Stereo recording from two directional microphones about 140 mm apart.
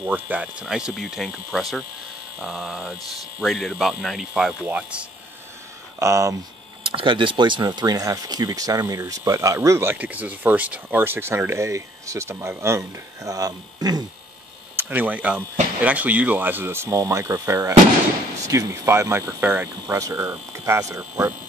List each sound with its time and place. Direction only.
0.0 s speech: 10° right (ahead or behind)
5.9 s speech: 20° right (ahead or behind)
6.9 s speech: 35° right (ahead or behind)
14.8 s speech: 15° right (ahead or behind)